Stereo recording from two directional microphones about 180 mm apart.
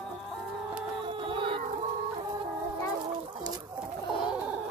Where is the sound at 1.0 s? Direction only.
30° right (ahead or behind).